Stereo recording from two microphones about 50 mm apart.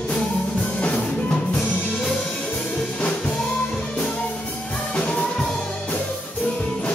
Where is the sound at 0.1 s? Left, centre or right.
Left.